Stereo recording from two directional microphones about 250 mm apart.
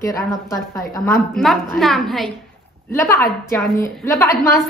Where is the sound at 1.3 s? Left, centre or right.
Centre.